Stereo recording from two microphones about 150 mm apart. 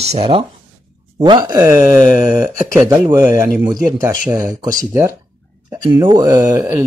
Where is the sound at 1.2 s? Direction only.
30° right (ahead or behind).